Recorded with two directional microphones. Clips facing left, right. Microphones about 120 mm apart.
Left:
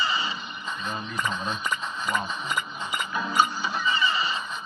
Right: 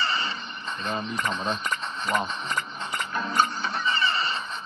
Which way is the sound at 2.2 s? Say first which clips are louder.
Even; 10° left (ahead or behind).